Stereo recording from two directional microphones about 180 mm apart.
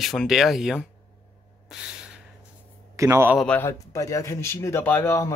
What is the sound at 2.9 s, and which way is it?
Speech, 15° right (ahead or behind).